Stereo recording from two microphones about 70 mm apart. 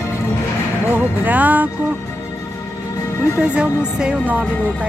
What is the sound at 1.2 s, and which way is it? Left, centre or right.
Speech, right.